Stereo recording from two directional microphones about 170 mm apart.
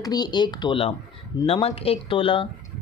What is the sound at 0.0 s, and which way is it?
Speech, 25° left (ahead or behind).